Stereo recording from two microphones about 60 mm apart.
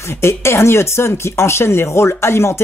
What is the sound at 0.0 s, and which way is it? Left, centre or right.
Speech, left.